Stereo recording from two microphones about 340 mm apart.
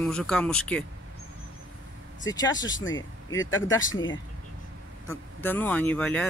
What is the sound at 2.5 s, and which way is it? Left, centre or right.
Speech, left.